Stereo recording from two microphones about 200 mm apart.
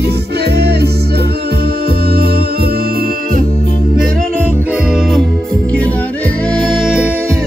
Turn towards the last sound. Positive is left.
turn(degrees=0)  # may be behind; listen again after turning